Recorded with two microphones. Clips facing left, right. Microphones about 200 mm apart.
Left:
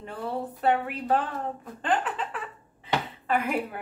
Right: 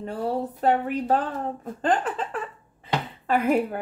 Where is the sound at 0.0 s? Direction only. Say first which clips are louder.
Right 5 dB; 40° right (ahead or behind).